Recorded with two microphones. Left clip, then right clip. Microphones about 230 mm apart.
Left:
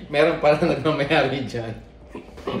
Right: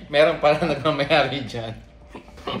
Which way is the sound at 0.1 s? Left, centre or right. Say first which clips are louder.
Right 1 dB; centre.